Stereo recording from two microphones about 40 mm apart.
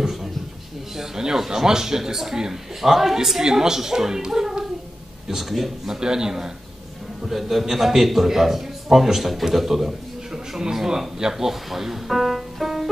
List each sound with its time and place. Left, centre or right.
0.9 s a man's voice: centre
5.9 s a man's voice: centre